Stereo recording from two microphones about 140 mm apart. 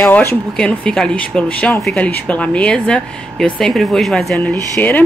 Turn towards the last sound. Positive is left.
turn(degrees=10)  # may be behind; listen again after turning